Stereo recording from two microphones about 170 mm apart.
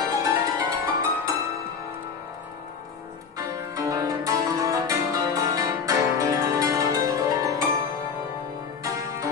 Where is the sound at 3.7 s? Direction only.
20° right (ahead or behind).